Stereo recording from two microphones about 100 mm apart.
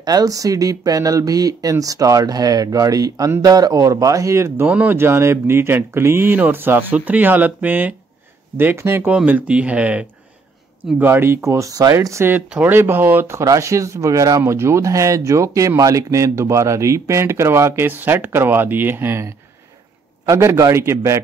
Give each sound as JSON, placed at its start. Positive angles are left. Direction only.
{"t": 0.0, "sound": "speech", "side_deg": -40}
{"t": 4.6, "sound": "speech", "side_deg": -15}
{"t": 4.9, "sound": "speech", "side_deg": -25}
{"t": 9.1, "sound": "speech", "side_deg": -15}
{"t": 12.4, "sound": "speech", "side_deg": -15}